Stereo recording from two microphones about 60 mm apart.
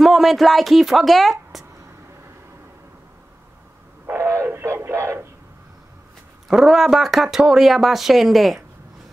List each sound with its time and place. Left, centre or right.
0.0 s a woman's voice: centre
4.0 s a sound: right
4.6 s music: right
6.5 s speech: centre